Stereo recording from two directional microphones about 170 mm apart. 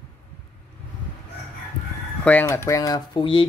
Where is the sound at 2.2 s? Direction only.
10° left (ahead or behind); by 3.4 s 25° left (ahead or behind).